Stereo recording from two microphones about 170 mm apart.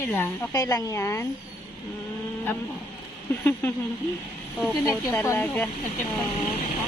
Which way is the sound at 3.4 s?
10° left (ahead or behind).